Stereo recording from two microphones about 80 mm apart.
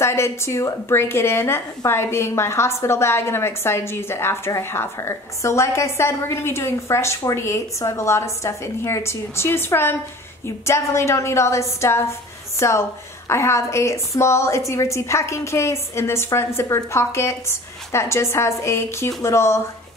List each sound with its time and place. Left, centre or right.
0.0 s a woman's voice: left